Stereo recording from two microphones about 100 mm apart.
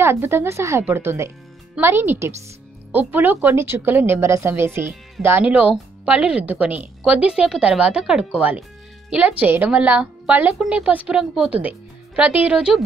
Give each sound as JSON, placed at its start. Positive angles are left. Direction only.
{"t": 0.0, "sound": "a woman's voice", "side_deg": -25}
{"t": 12.2, "sound": "speech", "side_deg": -15}
{"t": 12.5, "sound": "speech", "side_deg": -5}